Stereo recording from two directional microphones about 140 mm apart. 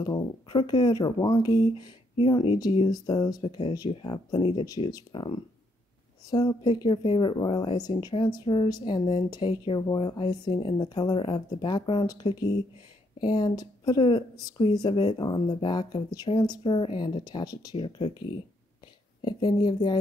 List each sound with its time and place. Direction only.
0.0 s speech: 30° left (ahead or behind)
3.4 s speech: 40° left (ahead or behind)
17.7 s speech: 40° left (ahead or behind)
19.2 s speech: 35° left (ahead or behind)